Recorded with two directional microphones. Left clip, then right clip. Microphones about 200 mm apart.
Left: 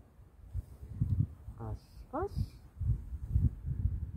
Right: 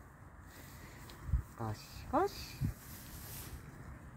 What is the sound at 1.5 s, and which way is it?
Speech, 35° right (ahead or behind).